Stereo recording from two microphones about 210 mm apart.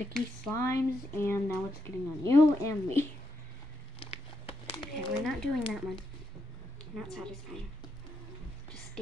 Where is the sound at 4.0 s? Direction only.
25° left (ahead or behind).